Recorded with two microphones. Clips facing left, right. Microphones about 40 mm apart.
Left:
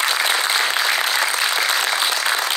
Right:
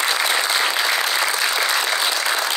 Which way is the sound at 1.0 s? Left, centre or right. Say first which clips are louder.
Left 1 dB; left.